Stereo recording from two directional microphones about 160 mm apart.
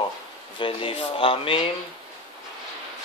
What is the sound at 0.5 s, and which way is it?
Speech, 35° left (ahead or behind).